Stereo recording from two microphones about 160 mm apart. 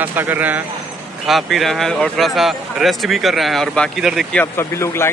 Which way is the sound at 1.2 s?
Centre (ahead or behind).